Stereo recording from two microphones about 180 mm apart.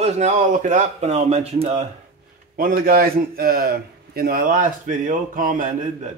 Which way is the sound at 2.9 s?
55° right (ahead or behind).